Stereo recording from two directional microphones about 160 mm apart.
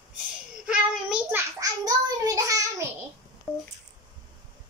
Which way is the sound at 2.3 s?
20° right (ahead or behind).